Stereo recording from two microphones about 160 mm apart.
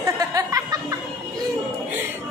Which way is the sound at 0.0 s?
20° right (ahead or behind).